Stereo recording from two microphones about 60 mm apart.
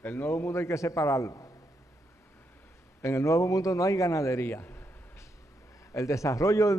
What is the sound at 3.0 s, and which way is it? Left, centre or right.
A man's voice, left.